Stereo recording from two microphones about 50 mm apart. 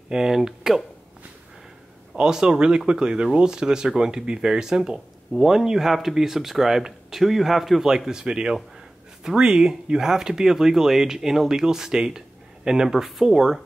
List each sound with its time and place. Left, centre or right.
0.1 s speech: centre
2.1 s speech: centre